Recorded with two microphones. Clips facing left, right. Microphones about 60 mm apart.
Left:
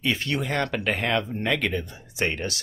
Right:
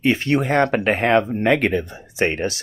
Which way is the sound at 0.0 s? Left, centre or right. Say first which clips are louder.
Right 8 dB; right.